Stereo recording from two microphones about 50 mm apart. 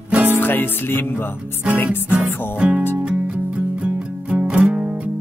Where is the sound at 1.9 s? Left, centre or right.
Right.